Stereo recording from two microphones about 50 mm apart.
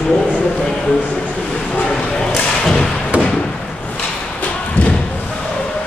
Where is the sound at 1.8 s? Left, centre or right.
Centre.